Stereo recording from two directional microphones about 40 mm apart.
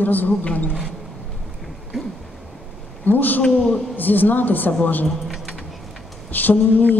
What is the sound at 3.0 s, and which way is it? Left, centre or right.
A woman's voice, left.